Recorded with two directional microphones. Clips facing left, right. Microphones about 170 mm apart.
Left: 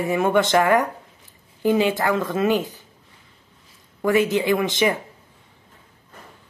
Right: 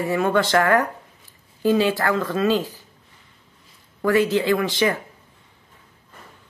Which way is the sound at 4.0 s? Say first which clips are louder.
Even; 20° left (ahead or behind).